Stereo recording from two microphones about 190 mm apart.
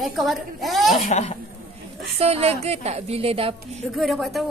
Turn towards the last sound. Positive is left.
turn(degrees=0)  # may be behind; listen again after turning